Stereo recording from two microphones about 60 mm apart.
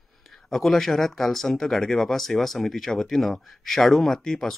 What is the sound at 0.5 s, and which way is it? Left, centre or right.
Speech, centre.